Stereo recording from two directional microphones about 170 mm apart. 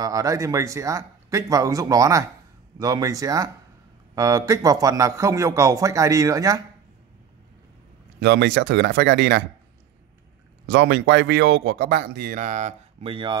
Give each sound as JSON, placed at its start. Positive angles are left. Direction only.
{"t": 0.0, "sound": "a man's voice", "side_deg": -20}
{"t": 8.2, "sound": "speech", "side_deg": -80}
{"t": 10.7, "sound": "speech", "side_deg": -90}